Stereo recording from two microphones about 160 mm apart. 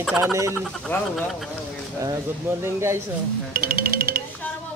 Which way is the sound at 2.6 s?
15° right (ahead or behind).